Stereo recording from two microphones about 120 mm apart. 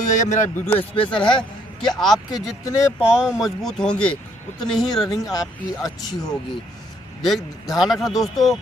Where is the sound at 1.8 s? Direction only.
Centre (ahead or behind).